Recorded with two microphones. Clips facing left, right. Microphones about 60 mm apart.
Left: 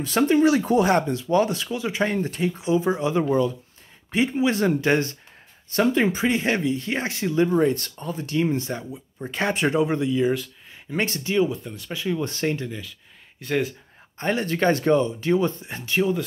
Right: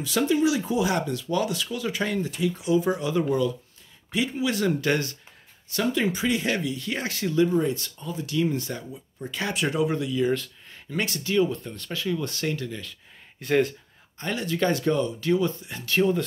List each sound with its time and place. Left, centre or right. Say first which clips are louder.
0.0 s speech: left 4 dB; left
1.1 s speech: left 5 dB; left
2.5 s speech: left 1 dB; left
7.5 s speech: left 4 dB; left
10.2 s speech: left 2 dB; centre
10.9 s speech: left 2 dB; left
11.4 s speech: left 1 dB; centre
11.9 s speech: left 2 dB; left
13.4 s speech: right 2 dB; centre
14.1 s speech: left 4 dB; left
16.0 s speech: even; centre